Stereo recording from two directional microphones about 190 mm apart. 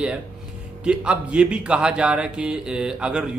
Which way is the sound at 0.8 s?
5° right (ahead or behind).